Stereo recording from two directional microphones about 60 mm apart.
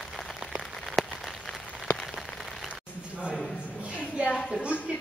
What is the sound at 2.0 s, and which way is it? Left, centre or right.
Rain on surface, centre.